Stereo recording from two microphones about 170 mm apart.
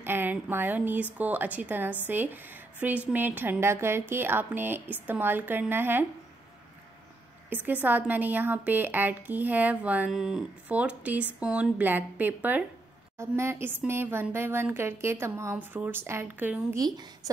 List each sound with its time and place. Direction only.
0.0 s a woman's voice: 10° right (ahead or behind)
7.4 s a woman's voice: 10° right (ahead or behind)
16.7 s speech: 25° right (ahead or behind)